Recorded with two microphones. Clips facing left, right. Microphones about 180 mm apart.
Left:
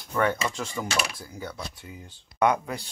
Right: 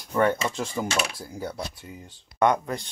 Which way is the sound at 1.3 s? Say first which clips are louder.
Right 4 dB; 35° right (ahead or behind).